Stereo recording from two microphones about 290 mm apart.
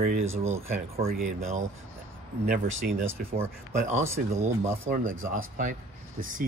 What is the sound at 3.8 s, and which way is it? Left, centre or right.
Speech, right.